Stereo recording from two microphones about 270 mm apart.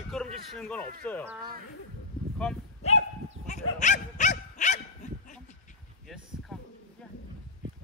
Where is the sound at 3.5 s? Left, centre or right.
Left.